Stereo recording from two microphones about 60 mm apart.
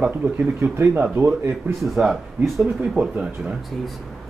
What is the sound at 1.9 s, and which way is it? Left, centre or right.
Speech, centre.